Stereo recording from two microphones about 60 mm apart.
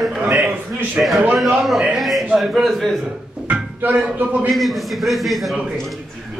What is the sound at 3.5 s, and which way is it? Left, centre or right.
Music, right.